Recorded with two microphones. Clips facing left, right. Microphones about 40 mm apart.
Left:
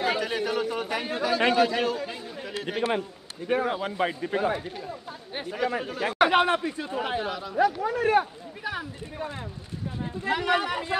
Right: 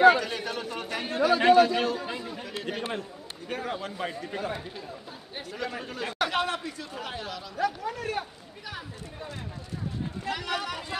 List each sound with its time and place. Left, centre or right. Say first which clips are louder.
0.2 s a man's voice: left 5 dB; centre
2.4 s a sound: left 6 dB; centre
3.4 s a man's voice: left 7 dB; centre